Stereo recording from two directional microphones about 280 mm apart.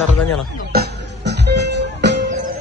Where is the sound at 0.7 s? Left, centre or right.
Right.